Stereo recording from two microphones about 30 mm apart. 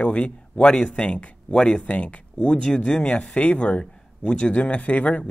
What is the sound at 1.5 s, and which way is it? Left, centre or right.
Speech, left.